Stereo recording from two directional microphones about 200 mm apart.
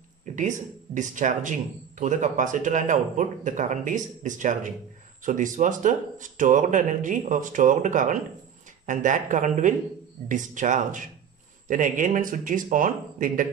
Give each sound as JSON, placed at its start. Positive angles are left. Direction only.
{"t": 0.4, "sound": "speech", "side_deg": -40}